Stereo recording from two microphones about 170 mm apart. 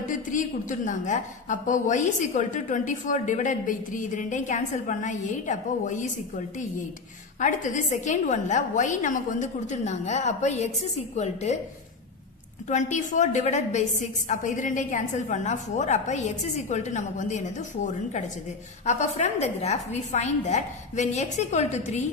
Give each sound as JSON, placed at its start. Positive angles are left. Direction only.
{"t": 0.3, "sound": "a woman's voice", "side_deg": 50}
{"t": 12.6, "sound": "a woman's voice", "side_deg": 45}